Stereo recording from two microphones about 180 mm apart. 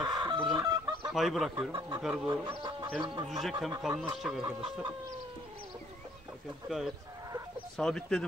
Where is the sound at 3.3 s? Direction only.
Centre (ahead or behind).